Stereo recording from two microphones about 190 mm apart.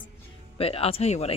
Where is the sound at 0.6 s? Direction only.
30° left (ahead or behind).